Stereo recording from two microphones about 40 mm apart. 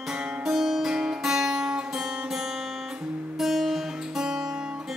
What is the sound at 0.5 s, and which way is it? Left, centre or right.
Music, centre.